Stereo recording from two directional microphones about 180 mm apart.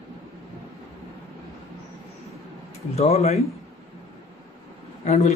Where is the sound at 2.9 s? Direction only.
35° left (ahead or behind).